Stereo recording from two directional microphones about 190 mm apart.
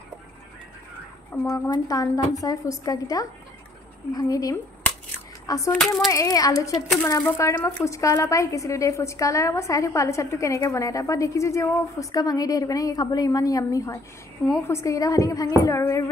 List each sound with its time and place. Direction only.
1.3 s a woman's voice: 10° left (ahead or behind)